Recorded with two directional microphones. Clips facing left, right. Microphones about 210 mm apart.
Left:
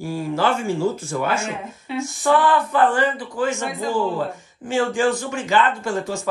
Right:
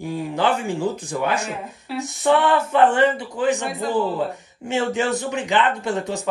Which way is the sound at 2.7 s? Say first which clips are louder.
Right 2 dB; 25° right (ahead or behind).